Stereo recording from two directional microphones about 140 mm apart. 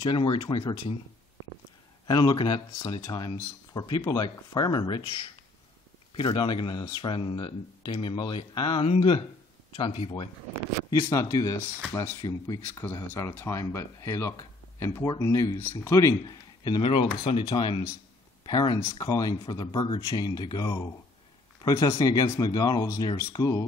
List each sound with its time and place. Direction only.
0.0 s speech: 35° left (ahead or behind)
2.0 s speech: 30° left (ahead or behind)
10.9 s speech: 25° left (ahead or behind)
16.9 s speech: 40° left (ahead or behind); by 23.6 s 25° left (ahead or behind)